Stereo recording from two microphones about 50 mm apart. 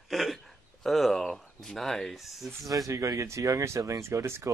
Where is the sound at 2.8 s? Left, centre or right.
Right.